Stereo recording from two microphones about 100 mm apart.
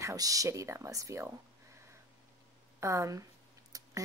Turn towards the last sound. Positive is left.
turn(degrees=-35)  # may be behind; listen again after turning